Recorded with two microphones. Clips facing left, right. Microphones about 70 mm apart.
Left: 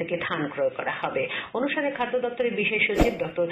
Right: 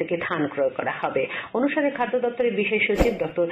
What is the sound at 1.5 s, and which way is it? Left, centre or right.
Speech, right.